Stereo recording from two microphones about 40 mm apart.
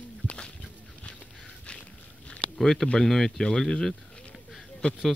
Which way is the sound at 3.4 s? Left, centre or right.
Centre.